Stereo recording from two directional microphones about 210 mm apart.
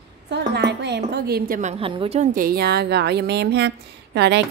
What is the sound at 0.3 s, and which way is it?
A woman's voice, 55° right (ahead or behind).